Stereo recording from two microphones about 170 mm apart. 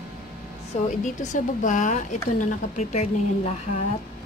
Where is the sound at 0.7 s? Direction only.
40° left (ahead or behind).